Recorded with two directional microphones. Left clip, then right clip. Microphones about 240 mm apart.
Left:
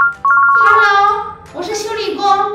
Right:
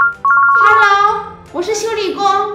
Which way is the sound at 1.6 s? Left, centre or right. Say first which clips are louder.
Right 2 dB; right.